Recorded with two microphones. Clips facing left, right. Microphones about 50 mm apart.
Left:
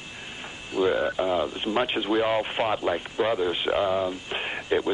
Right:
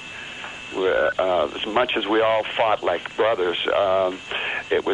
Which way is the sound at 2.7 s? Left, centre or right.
Centre.